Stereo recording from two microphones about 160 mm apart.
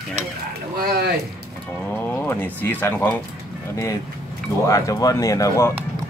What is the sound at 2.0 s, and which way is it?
Speech, 10° left (ahead or behind).